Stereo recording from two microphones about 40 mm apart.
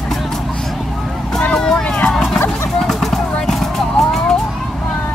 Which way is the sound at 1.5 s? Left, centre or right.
Centre.